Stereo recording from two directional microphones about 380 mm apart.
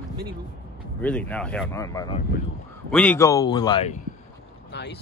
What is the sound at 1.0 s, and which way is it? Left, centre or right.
Speech, centre.